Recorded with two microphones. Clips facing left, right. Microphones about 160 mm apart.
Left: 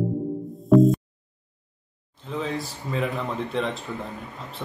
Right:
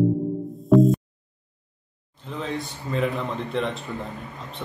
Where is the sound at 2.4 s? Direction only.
Centre (ahead or behind).